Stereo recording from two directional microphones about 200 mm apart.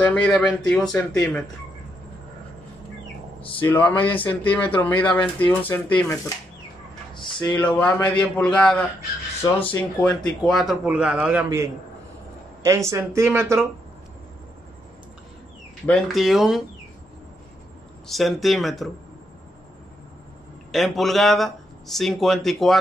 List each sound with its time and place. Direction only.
0.0 s a man's voice: 5° left (ahead or behind)
3.3 s a sound: 25° left (ahead or behind)
3.6 s speech: 10° left (ahead or behind)
7.6 s a man's voice: 5° left (ahead or behind); by 13.7 s 10° right (ahead or behind)
15.9 s a man's voice: centre (ahead or behind)
18.0 s a man's voice: centre (ahead or behind)
20.7 s a man's voice: centre (ahead or behind)